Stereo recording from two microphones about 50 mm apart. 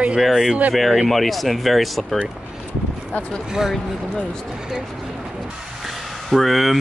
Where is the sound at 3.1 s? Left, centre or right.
Left.